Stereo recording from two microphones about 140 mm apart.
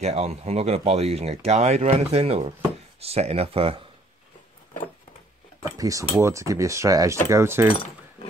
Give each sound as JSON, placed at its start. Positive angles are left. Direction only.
{"t": 0.0, "sound": "speech", "side_deg": -50}
{"t": 5.8, "sound": "speech", "side_deg": -25}